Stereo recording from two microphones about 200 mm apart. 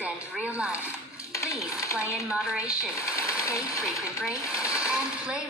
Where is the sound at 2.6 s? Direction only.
15° left (ahead or behind).